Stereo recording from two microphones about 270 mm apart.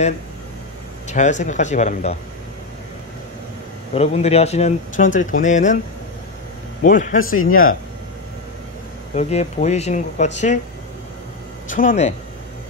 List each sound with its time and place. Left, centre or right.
1.0 s speech: left
3.9 s speech: left
6.8 s speech: left
7.3 s speech: left
9.1 s speech: left
11.7 s speech: left